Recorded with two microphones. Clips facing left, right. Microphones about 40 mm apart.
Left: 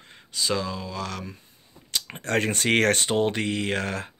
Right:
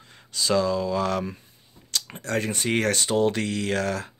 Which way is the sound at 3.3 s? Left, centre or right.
Left.